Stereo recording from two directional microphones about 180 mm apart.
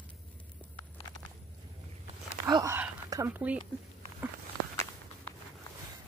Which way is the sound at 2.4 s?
20° right (ahead or behind).